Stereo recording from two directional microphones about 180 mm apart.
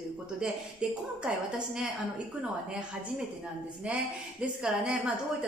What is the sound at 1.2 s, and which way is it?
Speech, 5° right (ahead or behind).